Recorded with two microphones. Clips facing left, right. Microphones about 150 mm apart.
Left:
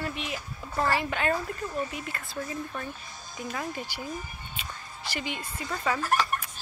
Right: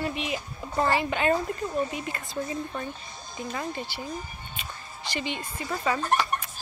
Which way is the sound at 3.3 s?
5° left (ahead or behind).